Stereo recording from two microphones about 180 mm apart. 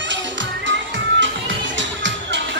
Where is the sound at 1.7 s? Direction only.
90° right.